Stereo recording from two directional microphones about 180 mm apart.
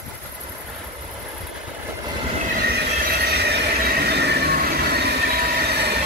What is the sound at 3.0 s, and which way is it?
Train, 60° right (ahead or behind).